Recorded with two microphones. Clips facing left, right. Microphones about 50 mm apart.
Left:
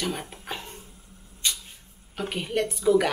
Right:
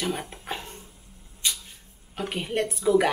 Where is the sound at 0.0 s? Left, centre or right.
Centre.